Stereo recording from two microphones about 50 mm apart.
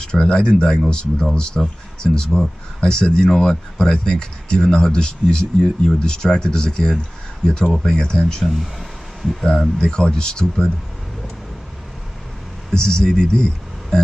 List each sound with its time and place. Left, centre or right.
0.0 s speech: centre
8.5 s a sound: centre
9.4 s speech: centre
12.7 s speech: centre